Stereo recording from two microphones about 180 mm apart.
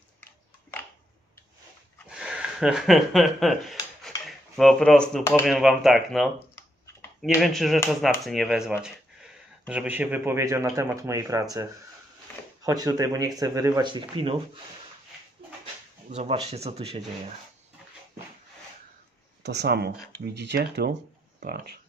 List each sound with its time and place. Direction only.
0.2 s a sound: 10° left (ahead or behind)
2.0 s speech: 5° right (ahead or behind)
12.6 s speech: 20° right (ahead or behind)
16.1 s speech: 35° right (ahead or behind)
19.4 s speech: 70° right (ahead or behind)